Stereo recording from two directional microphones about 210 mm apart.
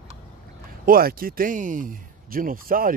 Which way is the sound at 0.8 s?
45° right (ahead or behind).